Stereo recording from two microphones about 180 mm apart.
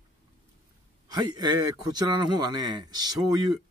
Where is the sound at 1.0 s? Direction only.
25° right (ahead or behind).